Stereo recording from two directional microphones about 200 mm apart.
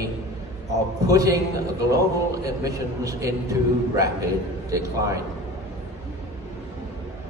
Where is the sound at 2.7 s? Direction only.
15° right (ahead or behind).